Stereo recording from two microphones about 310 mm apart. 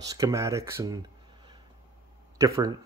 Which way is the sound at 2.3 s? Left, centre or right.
Centre.